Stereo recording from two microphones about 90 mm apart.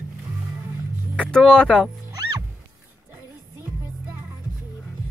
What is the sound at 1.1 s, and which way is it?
Vehicle, 15° left (ahead or behind).